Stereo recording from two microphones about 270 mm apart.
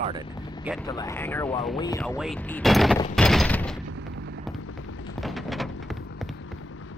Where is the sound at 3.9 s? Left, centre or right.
Right.